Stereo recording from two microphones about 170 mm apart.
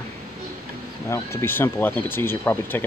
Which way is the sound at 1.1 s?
15° left (ahead or behind).